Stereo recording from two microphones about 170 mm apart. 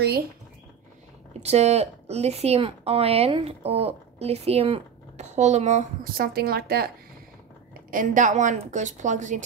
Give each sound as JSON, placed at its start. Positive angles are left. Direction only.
{"t": 1.4, "sound": "a woman's voice", "side_deg": -40}
{"t": 6.1, "sound": "speech", "side_deg": -60}
{"t": 7.9, "sound": "a woman's voice", "side_deg": -50}